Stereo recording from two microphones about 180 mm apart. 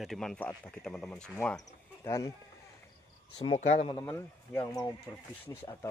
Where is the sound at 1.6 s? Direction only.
20° left (ahead or behind).